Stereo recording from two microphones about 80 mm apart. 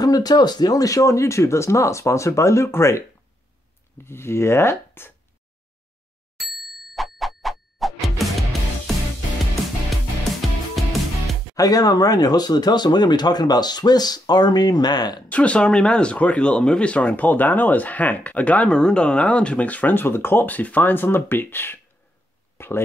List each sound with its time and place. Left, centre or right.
0.0 s speech: left
4.0 s speech: left
6.4 s music: centre
10.4 s music: centre
11.5 s speech: left
15.2 s speech: centre
22.6 s a sound: left